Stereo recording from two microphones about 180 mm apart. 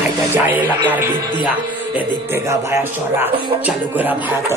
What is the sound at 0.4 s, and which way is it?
Speech, 10° right (ahead or behind).